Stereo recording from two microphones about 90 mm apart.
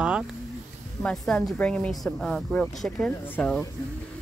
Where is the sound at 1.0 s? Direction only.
5° left (ahead or behind).